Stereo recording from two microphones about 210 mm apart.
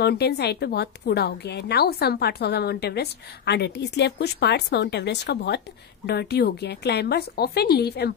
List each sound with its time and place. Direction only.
0.0 s a woman's voice: 50° left (ahead or behind)